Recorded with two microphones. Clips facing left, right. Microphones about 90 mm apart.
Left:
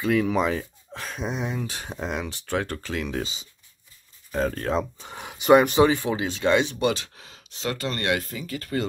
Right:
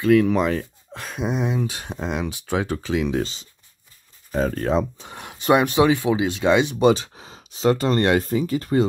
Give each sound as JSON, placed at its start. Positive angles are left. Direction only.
{"t": 0.0, "sound": "speech", "side_deg": 0}
{"t": 4.3, "sound": "speech", "side_deg": 0}
{"t": 6.8, "sound": "a sound", "side_deg": -20}
{"t": 7.6, "sound": "speech", "side_deg": -30}